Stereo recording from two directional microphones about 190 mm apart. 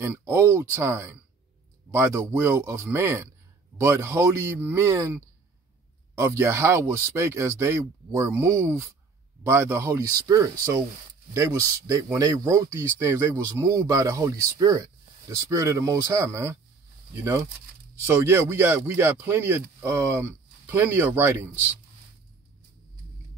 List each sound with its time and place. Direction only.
0.0 s speech: 15° right (ahead or behind)